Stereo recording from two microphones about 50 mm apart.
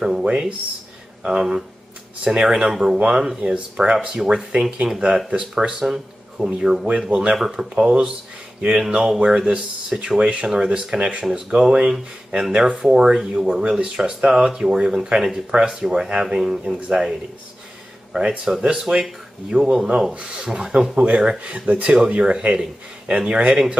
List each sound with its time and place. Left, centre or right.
0.0 s speech: centre
5.9 s speech: centre
7.3 s speech: centre
7.7 s speech: right
18.2 s speech: right
18.5 s speech: centre